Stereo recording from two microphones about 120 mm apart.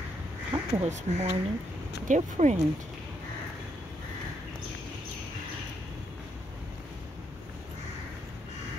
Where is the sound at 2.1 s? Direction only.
90° right.